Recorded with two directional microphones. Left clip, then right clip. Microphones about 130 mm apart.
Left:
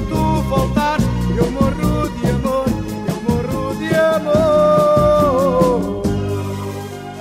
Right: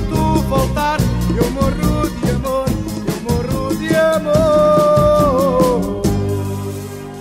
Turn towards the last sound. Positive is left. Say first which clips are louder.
# even
turn(degrees=20)  # may be behind; listen again after turning